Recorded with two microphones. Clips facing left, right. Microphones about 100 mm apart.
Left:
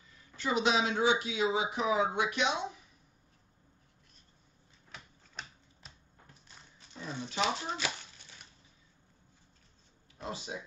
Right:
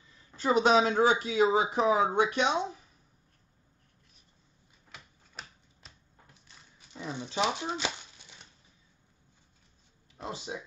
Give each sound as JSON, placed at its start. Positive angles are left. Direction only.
{"t": 0.4, "sound": "speech", "side_deg": -40}
{"t": 4.9, "sound": "typewriter", "side_deg": 0}
{"t": 7.0, "sound": "speech", "side_deg": -15}
{"t": 10.1, "sound": "speech", "side_deg": -30}